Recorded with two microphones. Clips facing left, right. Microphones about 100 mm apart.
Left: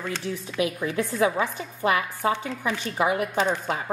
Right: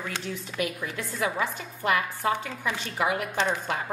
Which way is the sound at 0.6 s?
20° left (ahead or behind).